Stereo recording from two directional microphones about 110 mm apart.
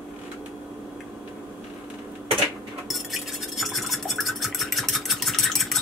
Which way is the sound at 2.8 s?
Centre (ahead or behind).